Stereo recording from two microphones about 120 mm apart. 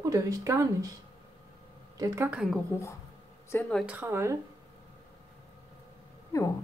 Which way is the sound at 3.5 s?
20° left (ahead or behind).